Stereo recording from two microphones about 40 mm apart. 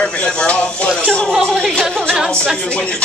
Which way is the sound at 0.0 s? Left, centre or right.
Left.